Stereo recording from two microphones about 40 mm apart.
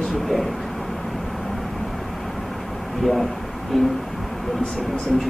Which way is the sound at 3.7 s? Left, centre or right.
Centre.